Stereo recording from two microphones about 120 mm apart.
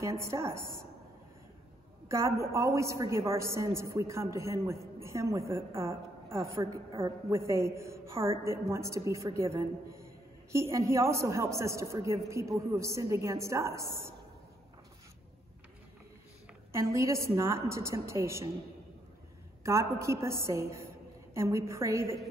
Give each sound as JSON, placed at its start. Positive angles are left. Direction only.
{"t": 0.0, "sound": "a man's voice", "side_deg": -25}
{"t": 2.0, "sound": "a man's voice", "side_deg": -25}
{"t": 16.7, "sound": "a man's voice", "side_deg": -25}
{"t": 19.6, "sound": "a man's voice", "side_deg": -25}